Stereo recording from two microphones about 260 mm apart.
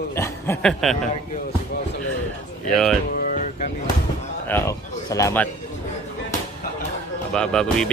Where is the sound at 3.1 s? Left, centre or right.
Left.